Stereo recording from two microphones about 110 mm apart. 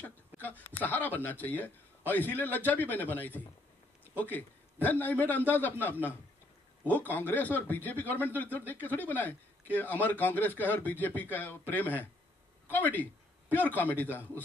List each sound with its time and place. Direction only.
0.0 s a man's voice: 15° left (ahead or behind)